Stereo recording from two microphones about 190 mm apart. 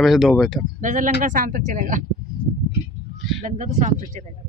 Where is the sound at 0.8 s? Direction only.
45° right (ahead or behind).